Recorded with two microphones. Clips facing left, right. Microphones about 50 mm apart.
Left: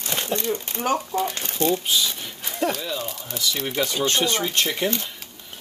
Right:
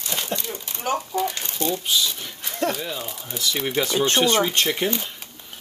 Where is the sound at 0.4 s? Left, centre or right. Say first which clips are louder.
Left 6 dB; left.